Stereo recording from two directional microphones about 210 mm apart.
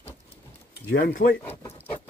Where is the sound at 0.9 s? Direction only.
45° left (ahead or behind).